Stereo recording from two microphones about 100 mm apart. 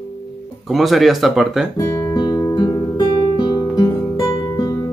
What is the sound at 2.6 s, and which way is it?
Guitar, 45° left (ahead or behind).